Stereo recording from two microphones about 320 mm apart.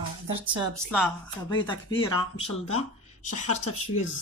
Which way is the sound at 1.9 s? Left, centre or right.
Left.